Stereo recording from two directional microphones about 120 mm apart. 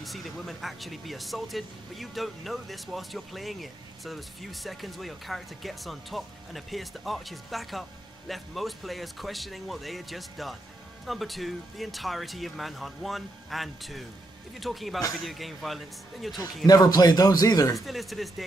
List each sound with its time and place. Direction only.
0.0 s speech: centre (ahead or behind)
16.6 s a man's voice: 30° left (ahead or behind)
17.7 s speech: centre (ahead or behind)